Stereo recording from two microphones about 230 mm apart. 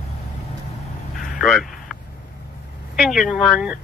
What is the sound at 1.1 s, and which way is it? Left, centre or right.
Vehicle, left.